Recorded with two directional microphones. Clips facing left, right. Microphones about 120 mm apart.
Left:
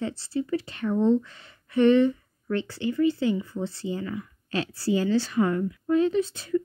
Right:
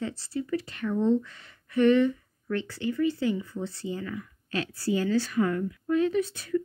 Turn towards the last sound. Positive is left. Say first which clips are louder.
# left 2 dB
turn(degrees=25)  # may be behind; listen again after turning